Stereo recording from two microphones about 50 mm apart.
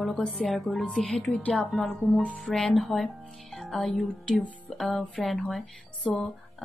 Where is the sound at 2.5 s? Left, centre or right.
Centre.